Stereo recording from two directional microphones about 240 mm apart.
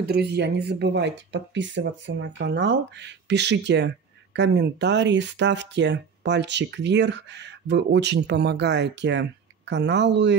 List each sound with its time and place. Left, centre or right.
0.0 s speech: right